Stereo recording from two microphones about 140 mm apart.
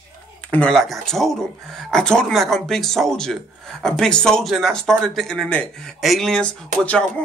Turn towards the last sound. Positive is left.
turn(degrees=5)  # may be behind; listen again after turning